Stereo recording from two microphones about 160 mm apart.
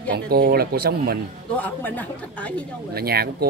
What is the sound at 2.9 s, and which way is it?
Speech, 75° right (ahead or behind).